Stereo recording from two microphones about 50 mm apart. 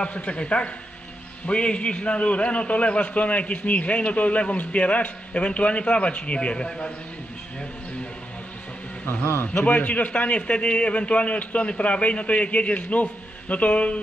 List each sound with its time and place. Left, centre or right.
0.0 s a man's voice: left
9.7 s a man's voice: left